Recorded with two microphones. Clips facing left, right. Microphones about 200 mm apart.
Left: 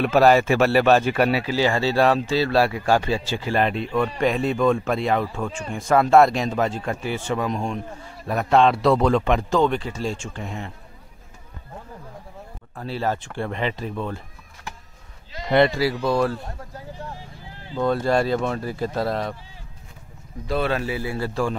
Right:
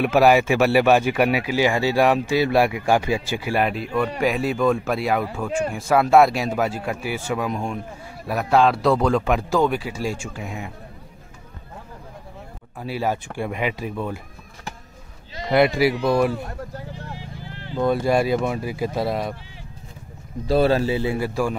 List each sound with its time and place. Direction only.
0.0 s speech: 10° right (ahead or behind)
12.7 s speech: 10° right (ahead or behind)
15.5 s speech: 10° right (ahead or behind)
16.9 s vehicle: 85° right
17.7 s speech: 10° right (ahead or behind)
20.4 s a man's voice: 35° right (ahead or behind)
21.3 s speech: 10° right (ahead or behind)